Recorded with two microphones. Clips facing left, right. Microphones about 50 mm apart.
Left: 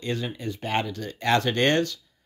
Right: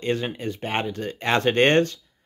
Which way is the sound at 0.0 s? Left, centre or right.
Right.